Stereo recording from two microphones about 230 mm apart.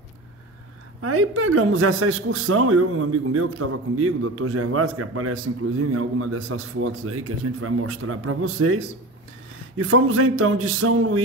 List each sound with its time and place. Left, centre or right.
1.0 s a man's voice: right